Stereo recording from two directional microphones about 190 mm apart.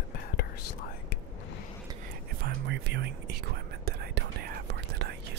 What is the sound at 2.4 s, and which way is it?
Whispering, 65° right (ahead or behind).